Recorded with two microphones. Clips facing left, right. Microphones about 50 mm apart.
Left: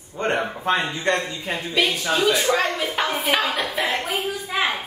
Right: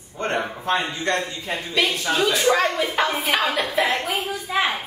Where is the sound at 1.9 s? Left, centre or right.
Centre.